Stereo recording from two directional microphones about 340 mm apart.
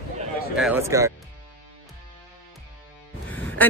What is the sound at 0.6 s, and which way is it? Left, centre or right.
Speech, centre.